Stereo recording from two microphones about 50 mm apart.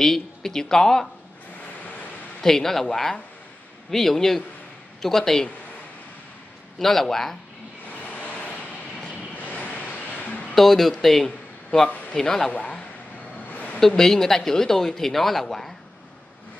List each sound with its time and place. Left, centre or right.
0.0 s speech: centre
2.4 s speech: centre
6.8 s speech: centre
8.0 s vehicle: left
9.1 s a sound: left
10.5 s speech: centre
11.2 s a sound: centre
12.2 s speech: centre
12.4 s speech: left
13.7 s speech: centre